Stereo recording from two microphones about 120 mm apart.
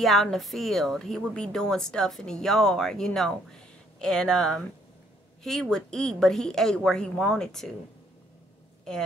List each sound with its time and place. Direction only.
0.0 s a woman's voice: centre (ahead or behind)
8.9 s a woman's voice: 5° left (ahead or behind)